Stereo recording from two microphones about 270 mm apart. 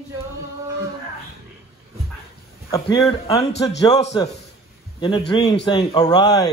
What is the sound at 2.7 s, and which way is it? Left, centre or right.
A man's voice, centre.